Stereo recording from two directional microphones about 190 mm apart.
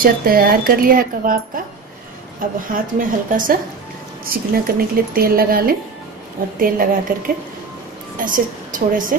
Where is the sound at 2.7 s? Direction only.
45° right (ahead or behind).